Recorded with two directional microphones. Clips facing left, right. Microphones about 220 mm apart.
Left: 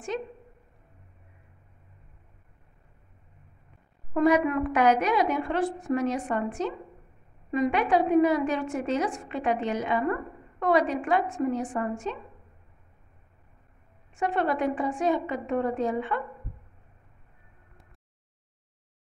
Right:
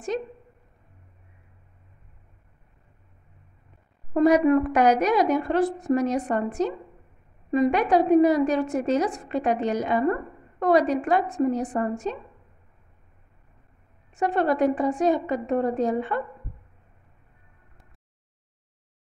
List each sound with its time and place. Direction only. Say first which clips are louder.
0.1 s a woman's voice: right 2 dB; 40° right (ahead or behind)
4.1 s a woman's voice: right 5 dB; 40° right (ahead or behind)
14.1 s a woman's voice: right 4 dB; 40° right (ahead or behind)